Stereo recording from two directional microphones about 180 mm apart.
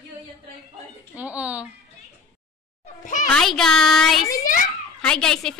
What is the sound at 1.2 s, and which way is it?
Speech, 10° right (ahead or behind).